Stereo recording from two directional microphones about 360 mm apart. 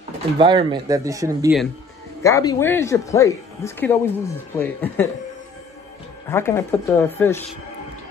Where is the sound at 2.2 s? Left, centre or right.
Centre.